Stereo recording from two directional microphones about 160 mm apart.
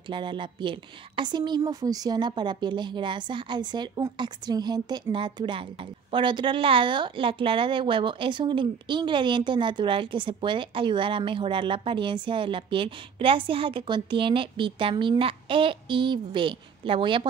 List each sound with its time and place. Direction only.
0.1 s a woman's voice: 30° right (ahead or behind)